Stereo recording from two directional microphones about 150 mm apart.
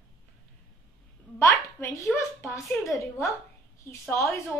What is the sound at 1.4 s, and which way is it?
Speech, 20° left (ahead or behind).